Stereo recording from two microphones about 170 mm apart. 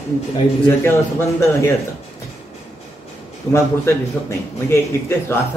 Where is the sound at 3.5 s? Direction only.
15° left (ahead or behind).